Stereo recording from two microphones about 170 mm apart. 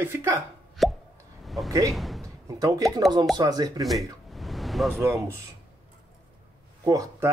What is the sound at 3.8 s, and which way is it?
Speech, centre (ahead or behind).